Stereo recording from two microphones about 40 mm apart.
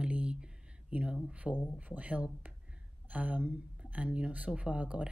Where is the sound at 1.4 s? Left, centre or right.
Centre.